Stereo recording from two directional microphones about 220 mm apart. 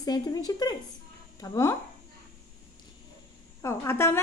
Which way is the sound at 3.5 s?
10° left (ahead or behind).